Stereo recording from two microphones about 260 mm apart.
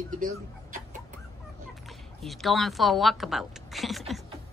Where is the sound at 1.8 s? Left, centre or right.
Centre.